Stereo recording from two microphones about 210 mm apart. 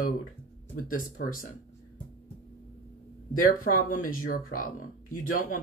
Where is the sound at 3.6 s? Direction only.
40° left (ahead or behind).